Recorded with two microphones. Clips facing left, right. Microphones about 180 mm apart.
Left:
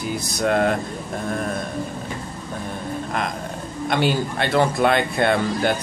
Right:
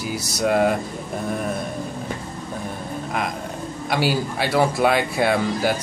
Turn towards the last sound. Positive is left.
turn(degrees=-5)  # may be behind; listen again after turning